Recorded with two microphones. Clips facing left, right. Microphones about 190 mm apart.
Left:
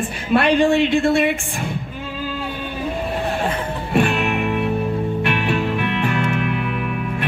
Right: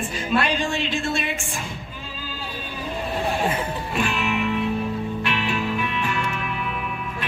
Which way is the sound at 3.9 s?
60° left (ahead or behind).